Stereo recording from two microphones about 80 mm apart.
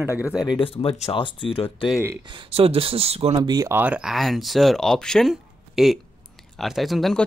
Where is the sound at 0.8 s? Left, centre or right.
Left.